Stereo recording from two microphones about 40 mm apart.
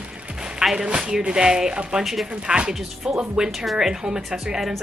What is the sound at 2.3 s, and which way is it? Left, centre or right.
Speech, right.